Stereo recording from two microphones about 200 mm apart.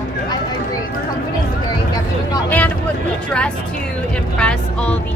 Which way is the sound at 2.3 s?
10° left (ahead or behind).